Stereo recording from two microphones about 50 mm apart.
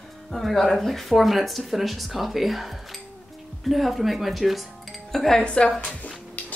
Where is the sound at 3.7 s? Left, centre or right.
Centre.